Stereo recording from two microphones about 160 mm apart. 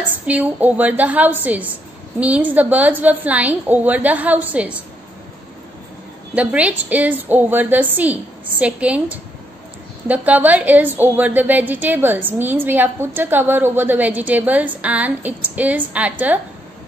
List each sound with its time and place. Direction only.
0.3 s a woman's voice: 10° right (ahead or behind)
6.3 s a woman's voice: 10° right (ahead or behind)